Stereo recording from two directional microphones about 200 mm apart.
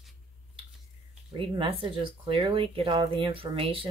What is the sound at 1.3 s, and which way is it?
Speech, 25° right (ahead or behind).